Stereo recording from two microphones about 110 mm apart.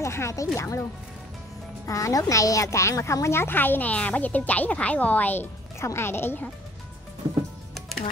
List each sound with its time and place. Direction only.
0.0 s a woman's voice: 25° left (ahead or behind)
1.9 s a child's voice: 30° left (ahead or behind)